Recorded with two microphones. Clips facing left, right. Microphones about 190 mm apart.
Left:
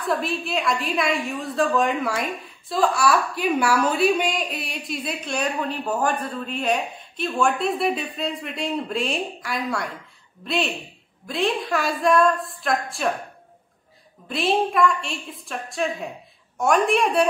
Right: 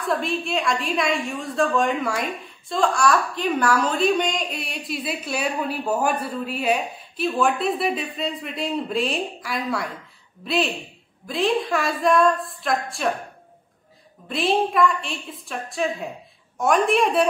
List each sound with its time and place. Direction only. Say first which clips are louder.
0.0 s a woman's voice: right 1 dB; centre (ahead or behind)
14.3 s a woman's voice: even; centre (ahead or behind)